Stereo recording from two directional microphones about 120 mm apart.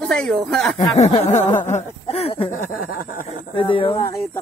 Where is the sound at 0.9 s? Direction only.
70° left (ahead or behind).